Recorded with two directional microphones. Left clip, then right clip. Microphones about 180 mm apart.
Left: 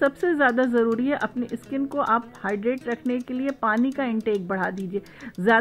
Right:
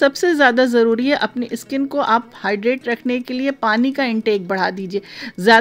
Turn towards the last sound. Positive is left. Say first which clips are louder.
# right 8 dB
turn(degrees=-25)  # may be behind; listen again after turning